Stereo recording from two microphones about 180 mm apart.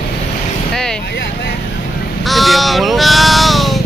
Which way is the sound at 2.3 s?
Centre (ahead or behind).